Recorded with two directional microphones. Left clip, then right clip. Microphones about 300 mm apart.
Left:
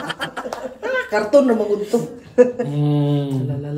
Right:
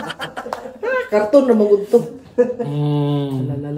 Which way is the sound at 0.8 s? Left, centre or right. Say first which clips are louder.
Right 3 dB; centre.